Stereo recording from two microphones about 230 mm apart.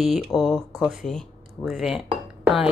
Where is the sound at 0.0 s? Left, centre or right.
Centre.